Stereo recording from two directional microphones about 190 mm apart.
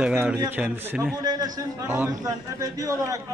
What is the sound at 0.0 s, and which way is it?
A man's voice, 5° right (ahead or behind).